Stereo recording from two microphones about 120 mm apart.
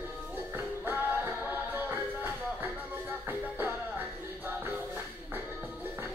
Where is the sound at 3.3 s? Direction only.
15° right (ahead or behind).